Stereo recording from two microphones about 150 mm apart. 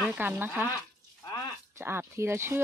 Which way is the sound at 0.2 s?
15° right (ahead or behind).